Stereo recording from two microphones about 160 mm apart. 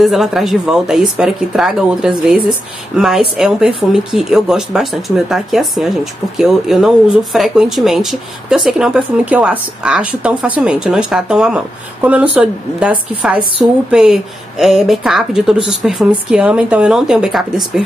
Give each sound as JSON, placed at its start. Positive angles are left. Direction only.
{"t": 0.0, "sound": "a woman's voice", "side_deg": 0}